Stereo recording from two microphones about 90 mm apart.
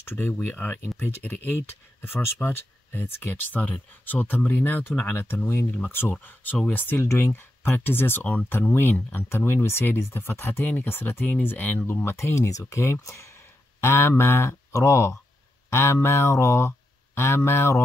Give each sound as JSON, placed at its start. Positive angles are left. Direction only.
{"t": 0.0, "sound": "speech", "side_deg": 25}